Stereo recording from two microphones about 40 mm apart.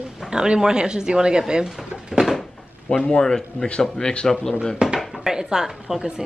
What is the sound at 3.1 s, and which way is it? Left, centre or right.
Speech, centre.